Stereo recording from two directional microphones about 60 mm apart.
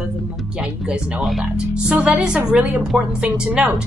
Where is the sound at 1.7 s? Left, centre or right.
Centre.